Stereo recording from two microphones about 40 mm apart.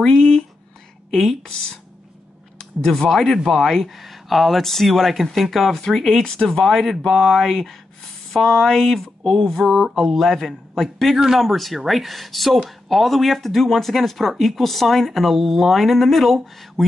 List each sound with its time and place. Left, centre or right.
0.0 s a sound: centre
1.5 s speech: centre
6.2 s speech: centre
6.6 s speech: centre